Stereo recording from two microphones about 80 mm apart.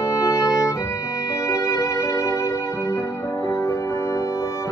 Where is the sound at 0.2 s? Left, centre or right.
Left.